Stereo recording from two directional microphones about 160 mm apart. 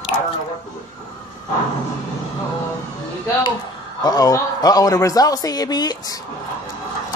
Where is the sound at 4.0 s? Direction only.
25° left (ahead or behind).